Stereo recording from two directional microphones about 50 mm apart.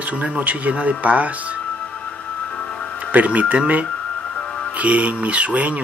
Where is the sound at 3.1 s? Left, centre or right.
Right.